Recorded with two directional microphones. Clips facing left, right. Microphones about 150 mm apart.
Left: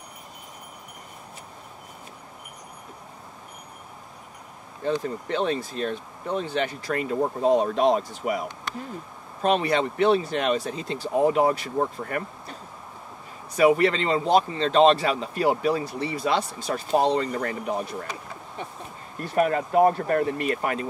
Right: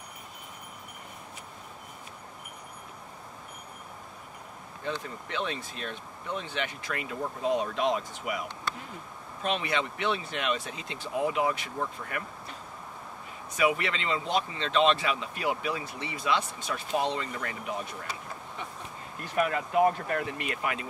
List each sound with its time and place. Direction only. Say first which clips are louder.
5.0 s speech: left 8 dB; 40° left (ahead or behind)
13.6 s speech: left 9 dB; 40° left (ahead or behind)